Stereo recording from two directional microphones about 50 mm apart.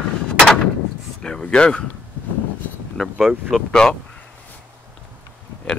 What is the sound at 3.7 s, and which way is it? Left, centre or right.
Speech, centre.